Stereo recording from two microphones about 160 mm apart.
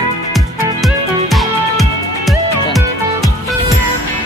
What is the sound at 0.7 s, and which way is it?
Music, centre (ahead or behind).